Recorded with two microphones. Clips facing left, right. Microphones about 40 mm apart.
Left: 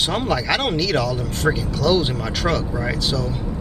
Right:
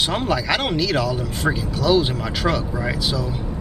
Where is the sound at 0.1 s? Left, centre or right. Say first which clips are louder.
Even; centre.